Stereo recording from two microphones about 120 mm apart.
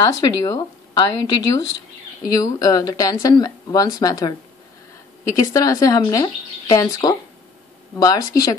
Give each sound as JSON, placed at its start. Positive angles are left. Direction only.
{"t": 0.2, "sound": "speech", "side_deg": 30}
{"t": 5.3, "sound": "speech", "side_deg": 30}